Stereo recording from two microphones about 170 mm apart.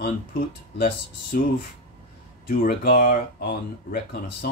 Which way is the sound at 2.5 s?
55° left (ahead or behind).